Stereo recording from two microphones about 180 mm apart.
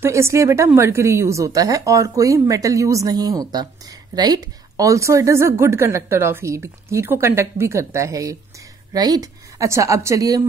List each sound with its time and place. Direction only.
0.0 s a woman's voice: 15° right (ahead or behind)